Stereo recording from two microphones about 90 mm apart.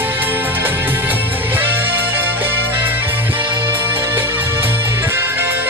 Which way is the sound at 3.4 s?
60° right (ahead or behind).